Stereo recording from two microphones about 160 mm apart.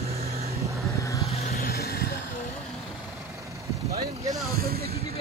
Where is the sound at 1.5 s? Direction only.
75° left (ahead or behind).